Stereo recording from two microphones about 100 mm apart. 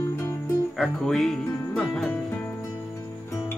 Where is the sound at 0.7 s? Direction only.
5° left (ahead or behind).